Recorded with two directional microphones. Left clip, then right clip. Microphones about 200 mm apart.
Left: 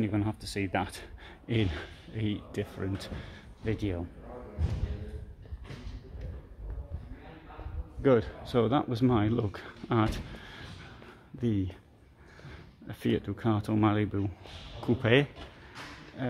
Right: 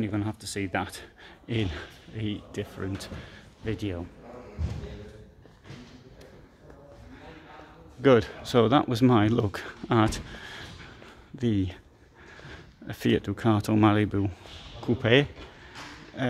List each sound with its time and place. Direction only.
0.0 s speech: centre (ahead or behind)
8.0 s speech: 35° right (ahead or behind)
14.8 s speech: 5° right (ahead or behind)
16.2 s speech: 30° right (ahead or behind)